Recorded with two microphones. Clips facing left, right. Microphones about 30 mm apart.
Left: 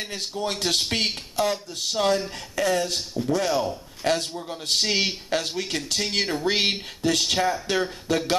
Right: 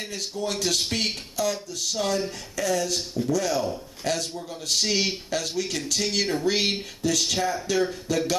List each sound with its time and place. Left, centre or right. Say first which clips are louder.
0.1 s speech: right 1 dB; left